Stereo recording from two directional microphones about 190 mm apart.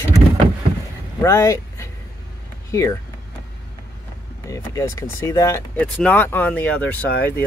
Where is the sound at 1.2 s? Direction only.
15° left (ahead or behind).